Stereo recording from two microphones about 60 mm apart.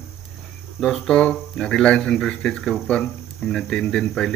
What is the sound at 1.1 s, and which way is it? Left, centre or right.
Speech, centre.